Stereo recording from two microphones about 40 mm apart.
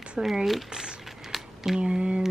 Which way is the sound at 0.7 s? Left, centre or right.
Centre.